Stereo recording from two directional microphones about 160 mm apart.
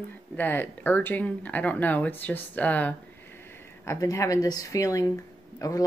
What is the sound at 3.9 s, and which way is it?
Speech, 20° left (ahead or behind).